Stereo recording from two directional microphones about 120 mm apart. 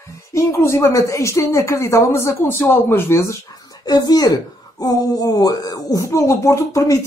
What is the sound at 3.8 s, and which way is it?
Speech, 35° left (ahead or behind).